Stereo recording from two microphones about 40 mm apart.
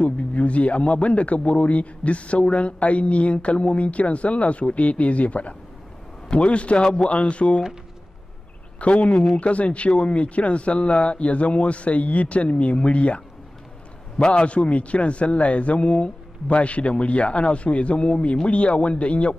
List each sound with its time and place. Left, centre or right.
0.0 s a man's voice: left
8.7 s a man's voice: left